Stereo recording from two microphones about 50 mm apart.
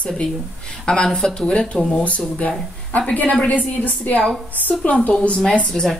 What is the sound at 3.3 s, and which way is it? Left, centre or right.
Speech, left.